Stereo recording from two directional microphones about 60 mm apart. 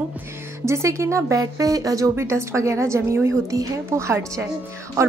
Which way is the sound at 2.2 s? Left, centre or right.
Right.